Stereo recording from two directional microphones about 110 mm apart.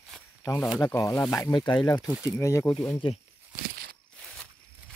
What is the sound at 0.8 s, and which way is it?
Speech, 30° left (ahead or behind).